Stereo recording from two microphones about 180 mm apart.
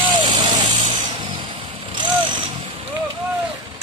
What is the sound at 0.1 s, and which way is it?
Vehicle, 25° right (ahead or behind).